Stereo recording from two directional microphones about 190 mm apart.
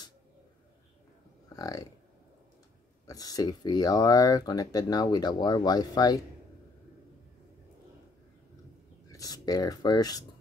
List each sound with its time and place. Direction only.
1.5 s speech: 20° left (ahead or behind)
3.1 s speech: 20° left (ahead or behind)
9.1 s speech: 20° left (ahead or behind)